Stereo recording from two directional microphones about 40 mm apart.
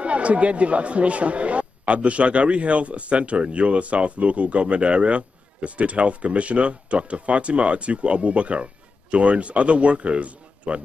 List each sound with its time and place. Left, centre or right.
0.0 s speech: right